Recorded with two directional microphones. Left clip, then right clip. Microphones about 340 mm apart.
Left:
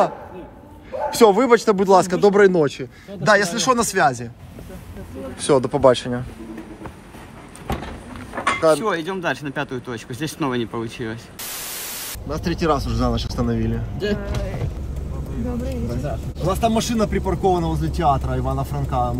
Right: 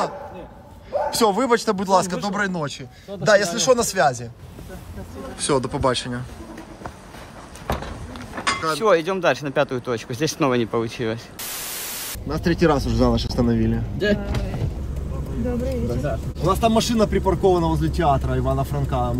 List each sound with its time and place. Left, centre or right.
1.1 s speech: centre
5.4 s speech: centre
8.8 s speech: right
11.4 s speech: centre